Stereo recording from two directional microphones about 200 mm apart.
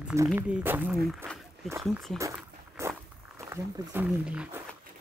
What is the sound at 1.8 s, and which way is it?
Speech, centre (ahead or behind).